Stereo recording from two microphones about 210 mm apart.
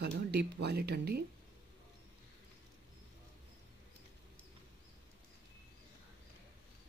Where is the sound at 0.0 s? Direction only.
50° right (ahead or behind).